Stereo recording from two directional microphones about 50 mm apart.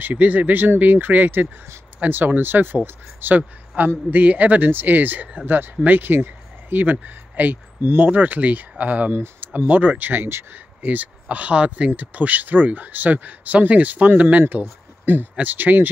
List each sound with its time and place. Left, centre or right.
0.0 s speech: right
8.1 s speech: right
9.1 s speech: right
9.7 s speech: right